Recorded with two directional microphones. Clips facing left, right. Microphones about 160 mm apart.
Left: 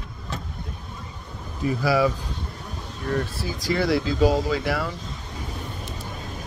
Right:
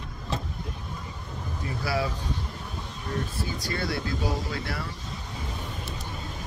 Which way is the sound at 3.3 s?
85° left.